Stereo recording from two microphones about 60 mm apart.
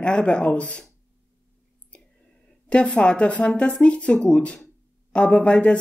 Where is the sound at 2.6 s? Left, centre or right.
Centre.